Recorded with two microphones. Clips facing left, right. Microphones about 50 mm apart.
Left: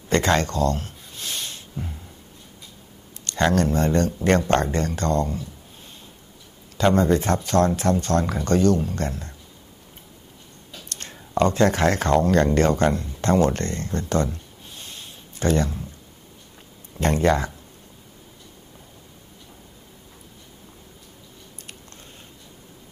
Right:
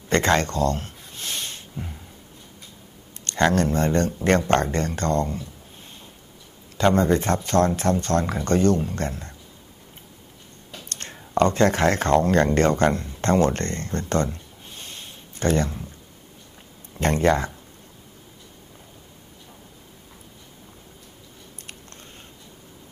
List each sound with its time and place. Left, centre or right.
0.1 s a sound: right
3.3 s speech: right
6.8 s speech: right
10.7 s speech: right
17.0 s speech: right